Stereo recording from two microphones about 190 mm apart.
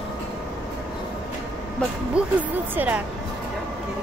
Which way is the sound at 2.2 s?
5° right (ahead or behind).